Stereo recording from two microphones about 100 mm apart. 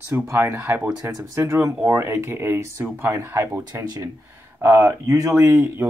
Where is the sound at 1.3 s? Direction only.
30° right (ahead or behind).